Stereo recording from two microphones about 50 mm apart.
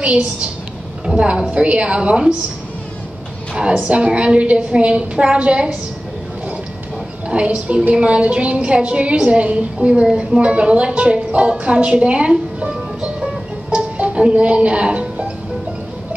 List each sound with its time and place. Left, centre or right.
0.0 s a woman's voice: right
3.5 s a woman's voice: right
7.2 s a woman's voice: right
13.7 s music: right